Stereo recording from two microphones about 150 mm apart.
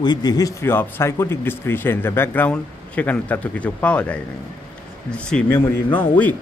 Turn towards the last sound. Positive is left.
turn(degrees=10)  # may be behind; listen again after turning